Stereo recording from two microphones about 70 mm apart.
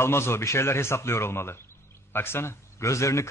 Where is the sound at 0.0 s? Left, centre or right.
Left.